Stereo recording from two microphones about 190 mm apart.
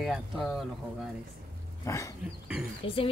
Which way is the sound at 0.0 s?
Centre (ahead or behind).